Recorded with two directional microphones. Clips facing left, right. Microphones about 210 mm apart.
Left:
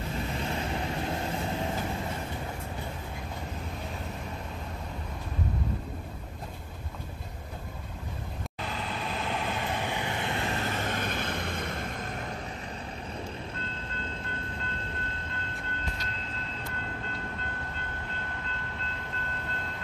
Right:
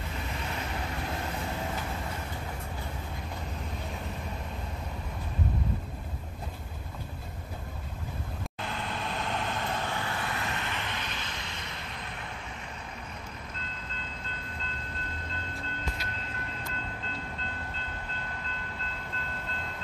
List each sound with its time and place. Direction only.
8.5 s vehicle: centre (ahead or behind); by 12.3 s 45° left (ahead or behind)